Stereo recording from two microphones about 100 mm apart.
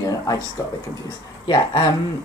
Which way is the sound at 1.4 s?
45° left (ahead or behind).